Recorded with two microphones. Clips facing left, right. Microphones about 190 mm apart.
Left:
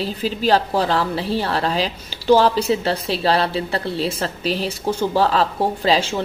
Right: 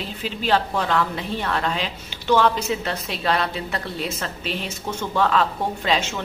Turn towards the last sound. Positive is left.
turn(degrees=35)  # may be behind; listen again after turning